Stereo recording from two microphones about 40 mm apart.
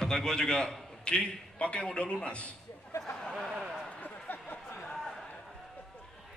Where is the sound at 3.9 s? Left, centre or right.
Left.